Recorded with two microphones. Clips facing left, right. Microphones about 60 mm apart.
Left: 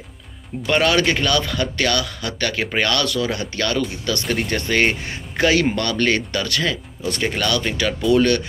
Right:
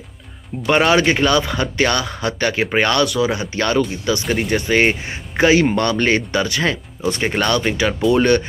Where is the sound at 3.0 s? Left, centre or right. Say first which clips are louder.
Right 4 dB; centre.